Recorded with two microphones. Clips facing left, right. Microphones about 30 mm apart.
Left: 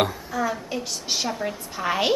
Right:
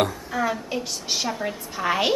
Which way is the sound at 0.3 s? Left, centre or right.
Right.